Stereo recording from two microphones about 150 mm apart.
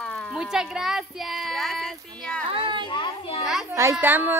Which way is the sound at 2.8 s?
35° left (ahead or behind).